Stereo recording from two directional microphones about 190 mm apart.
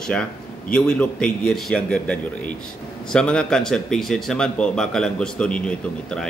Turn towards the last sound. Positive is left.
turn(degrees=5)  # may be behind; listen again after turning